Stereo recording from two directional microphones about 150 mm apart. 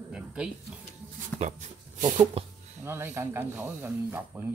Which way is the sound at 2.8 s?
15° right (ahead or behind).